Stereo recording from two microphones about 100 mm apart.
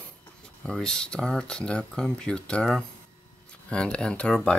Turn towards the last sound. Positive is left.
turn(degrees=10)  # may be behind; listen again after turning